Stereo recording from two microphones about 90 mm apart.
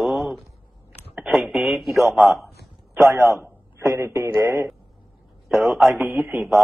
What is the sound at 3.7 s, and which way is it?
Speech, 20° right (ahead or behind).